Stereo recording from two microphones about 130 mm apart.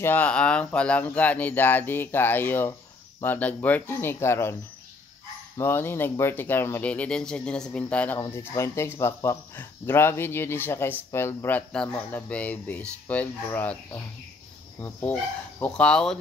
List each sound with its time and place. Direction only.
0.0 s speech: 15° left (ahead or behind)
5.6 s speech: 15° left (ahead or behind)